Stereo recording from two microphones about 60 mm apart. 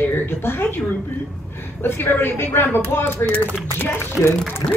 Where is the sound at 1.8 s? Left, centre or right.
Left.